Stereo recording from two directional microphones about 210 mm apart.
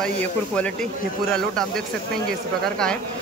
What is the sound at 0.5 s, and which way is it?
Speech, 5° left (ahead or behind).